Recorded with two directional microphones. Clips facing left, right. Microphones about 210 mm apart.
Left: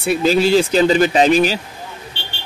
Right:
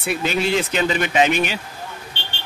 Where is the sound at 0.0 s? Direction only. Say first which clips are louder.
Left 7 dB; 30° left (ahead or behind).